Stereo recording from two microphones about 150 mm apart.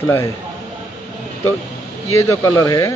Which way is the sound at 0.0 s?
15° left (ahead or behind).